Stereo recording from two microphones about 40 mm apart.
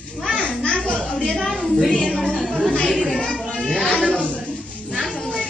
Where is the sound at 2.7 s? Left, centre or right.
Centre.